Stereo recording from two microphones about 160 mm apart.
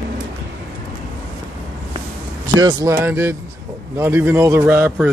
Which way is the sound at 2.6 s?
25° right (ahead or behind).